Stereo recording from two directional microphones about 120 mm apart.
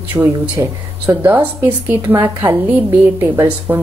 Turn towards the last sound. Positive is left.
turn(degrees=-15)  # may be behind; listen again after turning